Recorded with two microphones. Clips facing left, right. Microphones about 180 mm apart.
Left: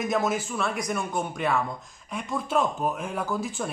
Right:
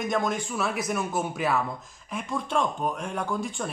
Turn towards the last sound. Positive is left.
turn(degrees=0)  # may be behind; listen again after turning